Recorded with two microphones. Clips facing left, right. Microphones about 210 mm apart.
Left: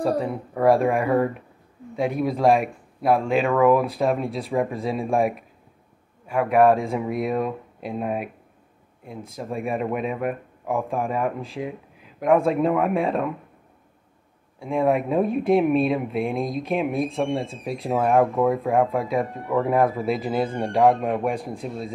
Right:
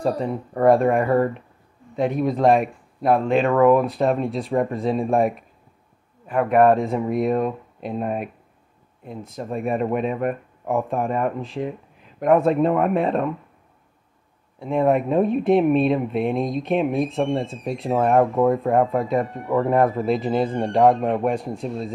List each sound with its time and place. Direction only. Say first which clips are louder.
0.2 s speech: right 2 dB; 5° left (ahead or behind)
9.3 s speech: right 3 dB; centre (ahead or behind)
14.6 s speech: right 2 dB; centre (ahead or behind)